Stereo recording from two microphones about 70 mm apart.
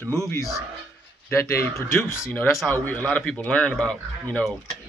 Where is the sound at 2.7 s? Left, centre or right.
Centre.